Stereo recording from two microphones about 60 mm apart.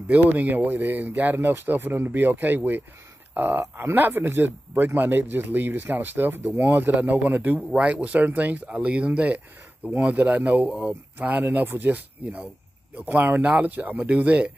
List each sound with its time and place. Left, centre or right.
0.1 s speech: right
8.6 s speech: centre